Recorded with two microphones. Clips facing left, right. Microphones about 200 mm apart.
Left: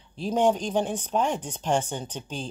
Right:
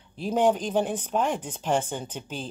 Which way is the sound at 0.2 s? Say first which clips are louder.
Even; 5° right (ahead or behind).